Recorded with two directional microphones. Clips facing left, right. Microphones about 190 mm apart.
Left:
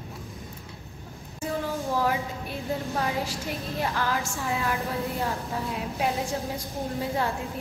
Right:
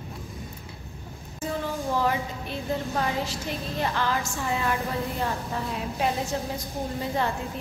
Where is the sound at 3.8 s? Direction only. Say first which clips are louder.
Right 1 dB; 5° left (ahead or behind).